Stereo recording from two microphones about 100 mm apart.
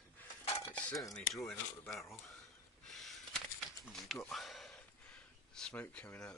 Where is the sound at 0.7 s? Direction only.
15° left (ahead or behind).